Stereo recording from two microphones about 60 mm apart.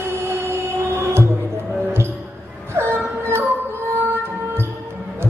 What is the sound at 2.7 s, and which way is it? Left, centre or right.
Music, right.